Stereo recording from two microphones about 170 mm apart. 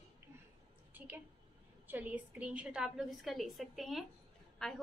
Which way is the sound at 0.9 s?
10° right (ahead or behind).